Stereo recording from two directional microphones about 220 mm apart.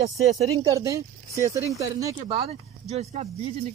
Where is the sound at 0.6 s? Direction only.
20° right (ahead or behind).